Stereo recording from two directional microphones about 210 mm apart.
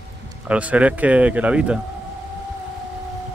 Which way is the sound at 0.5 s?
5° right (ahead or behind).